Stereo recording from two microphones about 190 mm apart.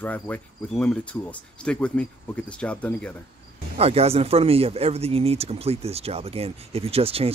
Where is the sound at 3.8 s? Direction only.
30° right (ahead or behind).